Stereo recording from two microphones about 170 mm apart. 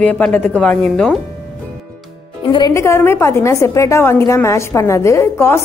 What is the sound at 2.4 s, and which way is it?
Speech, 25° left (ahead or behind).